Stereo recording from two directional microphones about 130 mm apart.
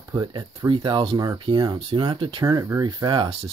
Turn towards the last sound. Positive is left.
turn(degrees=-35)  # may be behind; listen again after turning